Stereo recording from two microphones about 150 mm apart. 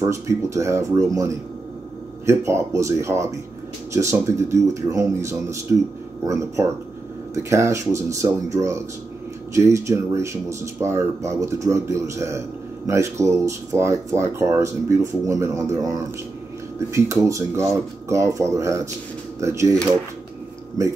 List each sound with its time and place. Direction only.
0.0 s speech: 20° right (ahead or behind)